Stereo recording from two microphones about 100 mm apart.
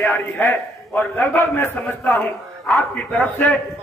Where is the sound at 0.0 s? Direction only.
20° left (ahead or behind).